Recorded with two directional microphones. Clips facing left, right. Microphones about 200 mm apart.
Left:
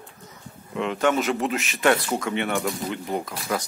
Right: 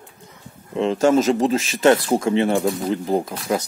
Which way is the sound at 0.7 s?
30° right (ahead or behind).